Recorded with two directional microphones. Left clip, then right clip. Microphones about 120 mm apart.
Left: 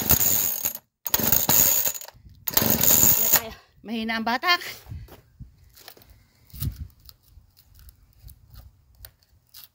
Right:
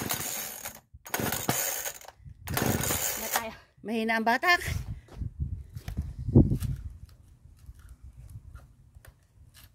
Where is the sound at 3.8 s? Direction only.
60° right (ahead or behind).